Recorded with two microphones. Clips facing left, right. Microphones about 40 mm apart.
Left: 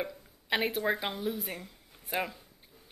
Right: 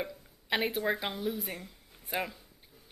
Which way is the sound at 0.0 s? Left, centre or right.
Centre.